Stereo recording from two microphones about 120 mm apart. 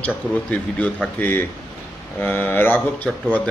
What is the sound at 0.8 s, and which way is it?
A man's voice, 15° left (ahead or behind).